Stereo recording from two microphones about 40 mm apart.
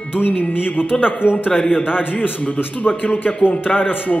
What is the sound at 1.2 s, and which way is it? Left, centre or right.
Speech, left.